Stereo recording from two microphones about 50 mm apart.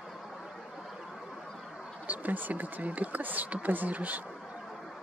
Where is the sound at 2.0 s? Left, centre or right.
Right.